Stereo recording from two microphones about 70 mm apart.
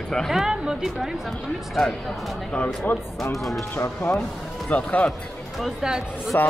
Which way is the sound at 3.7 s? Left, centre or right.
Left.